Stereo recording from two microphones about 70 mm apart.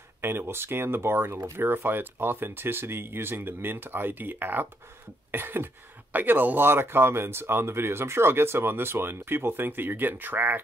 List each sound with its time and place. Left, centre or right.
0.2 s speech: right